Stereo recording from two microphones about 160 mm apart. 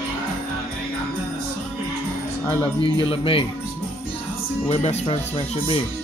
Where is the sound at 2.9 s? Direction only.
35° left (ahead or behind).